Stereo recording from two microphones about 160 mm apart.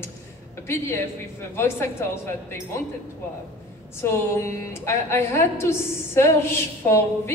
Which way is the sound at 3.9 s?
15° left (ahead or behind).